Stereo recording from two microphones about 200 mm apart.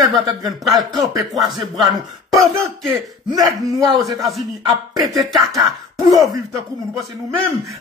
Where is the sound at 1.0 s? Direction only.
Centre (ahead or behind).